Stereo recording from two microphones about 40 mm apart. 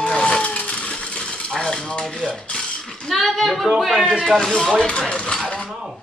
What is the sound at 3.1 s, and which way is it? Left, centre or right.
Speech, centre.